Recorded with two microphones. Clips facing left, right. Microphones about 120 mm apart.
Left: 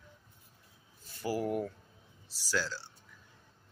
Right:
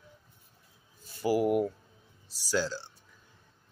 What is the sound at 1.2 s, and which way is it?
Speech, 10° right (ahead or behind).